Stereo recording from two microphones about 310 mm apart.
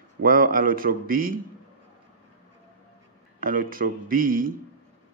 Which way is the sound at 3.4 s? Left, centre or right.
Right.